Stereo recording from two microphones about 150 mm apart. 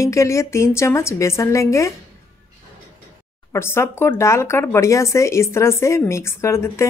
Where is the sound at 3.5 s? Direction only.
15° left (ahead or behind).